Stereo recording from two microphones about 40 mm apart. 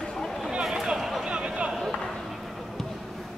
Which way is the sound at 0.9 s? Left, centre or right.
Centre.